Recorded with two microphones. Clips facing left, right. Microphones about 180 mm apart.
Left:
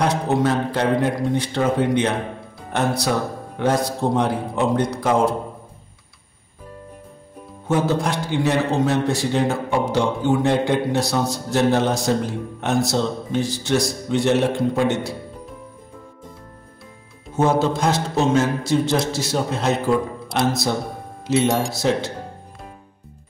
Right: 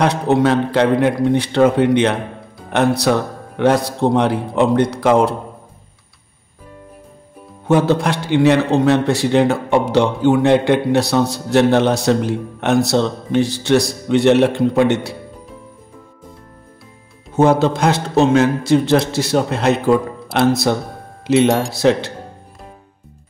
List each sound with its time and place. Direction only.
0.0 s a man's voice: 70° right (ahead or behind)
7.6 s a man's voice: 70° right (ahead or behind)
17.4 s a man's voice: 65° right (ahead or behind)